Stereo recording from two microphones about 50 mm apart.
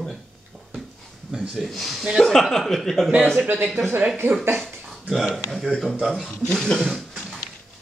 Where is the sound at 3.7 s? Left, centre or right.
Right.